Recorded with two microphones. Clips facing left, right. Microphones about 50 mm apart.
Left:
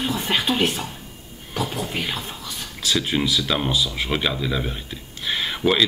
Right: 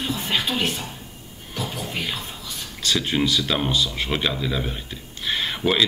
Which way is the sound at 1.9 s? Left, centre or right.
Left.